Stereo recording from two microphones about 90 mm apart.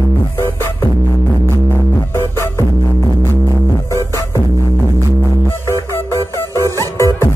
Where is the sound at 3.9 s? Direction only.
35° left (ahead or behind).